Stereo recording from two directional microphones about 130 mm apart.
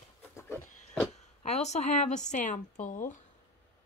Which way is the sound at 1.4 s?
60° left (ahead or behind).